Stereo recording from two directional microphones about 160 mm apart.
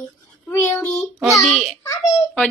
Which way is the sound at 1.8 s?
20° left (ahead or behind).